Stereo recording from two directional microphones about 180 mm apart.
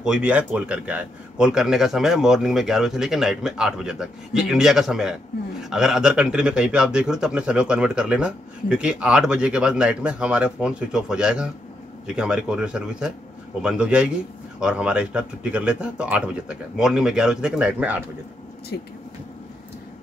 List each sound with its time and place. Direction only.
0.0 s a man's voice: 5° right (ahead or behind)
18.7 s speech: 65° left (ahead or behind)